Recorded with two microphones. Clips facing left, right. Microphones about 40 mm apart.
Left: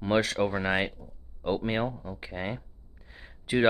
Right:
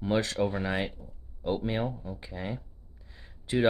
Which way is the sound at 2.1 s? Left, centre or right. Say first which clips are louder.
Left 2 dB; left.